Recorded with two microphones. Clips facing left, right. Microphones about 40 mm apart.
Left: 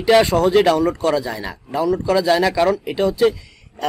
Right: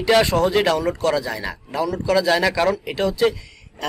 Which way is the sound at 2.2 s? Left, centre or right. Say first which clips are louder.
Left 2 dB; centre.